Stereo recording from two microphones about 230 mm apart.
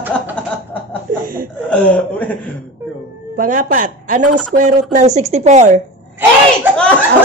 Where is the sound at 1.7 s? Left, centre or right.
Centre.